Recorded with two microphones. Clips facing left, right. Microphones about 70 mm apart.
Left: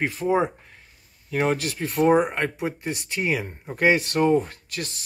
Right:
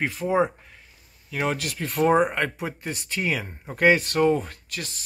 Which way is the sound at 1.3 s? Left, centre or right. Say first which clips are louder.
Left 3 dB; left.